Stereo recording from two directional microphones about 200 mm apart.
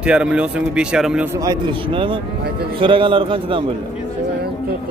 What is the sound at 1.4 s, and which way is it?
A man's voice, 25° right (ahead or behind).